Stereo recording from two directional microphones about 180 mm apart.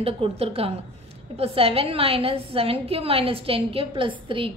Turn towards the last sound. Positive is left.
turn(degrees=-30)  # may be behind; listen again after turning